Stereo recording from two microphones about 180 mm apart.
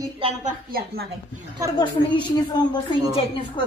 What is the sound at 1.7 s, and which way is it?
Speech, 25° left (ahead or behind).